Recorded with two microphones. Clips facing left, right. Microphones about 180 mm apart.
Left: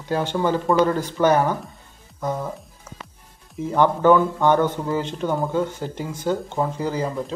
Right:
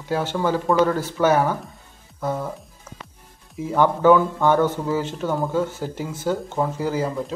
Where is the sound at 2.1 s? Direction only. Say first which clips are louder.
Even; centre (ahead or behind).